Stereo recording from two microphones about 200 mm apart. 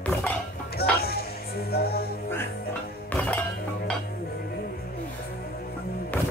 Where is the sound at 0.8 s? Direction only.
50° left (ahead or behind).